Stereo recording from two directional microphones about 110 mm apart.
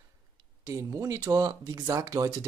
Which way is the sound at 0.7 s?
30° right (ahead or behind).